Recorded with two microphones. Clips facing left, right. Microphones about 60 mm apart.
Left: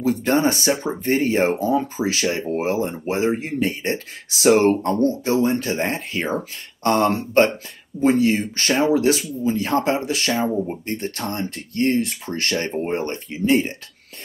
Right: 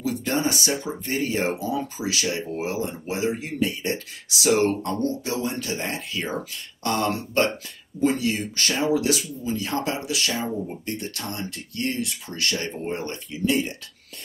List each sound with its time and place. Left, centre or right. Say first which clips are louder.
0.0 s speech: left 6 dB; left